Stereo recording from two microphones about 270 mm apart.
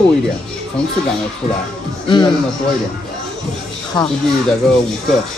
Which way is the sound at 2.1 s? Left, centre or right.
Centre.